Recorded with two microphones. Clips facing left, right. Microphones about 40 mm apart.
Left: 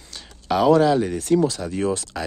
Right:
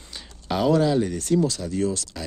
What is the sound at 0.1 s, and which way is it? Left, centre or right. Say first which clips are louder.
Speech: left 5 dB; centre.